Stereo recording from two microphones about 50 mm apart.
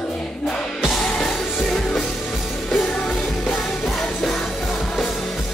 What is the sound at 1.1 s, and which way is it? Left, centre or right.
Music, centre.